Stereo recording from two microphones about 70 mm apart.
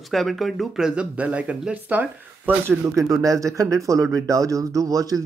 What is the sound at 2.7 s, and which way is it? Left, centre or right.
Speech, right.